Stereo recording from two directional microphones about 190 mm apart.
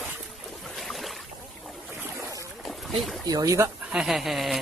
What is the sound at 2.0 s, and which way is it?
Boat, 15° right (ahead or behind).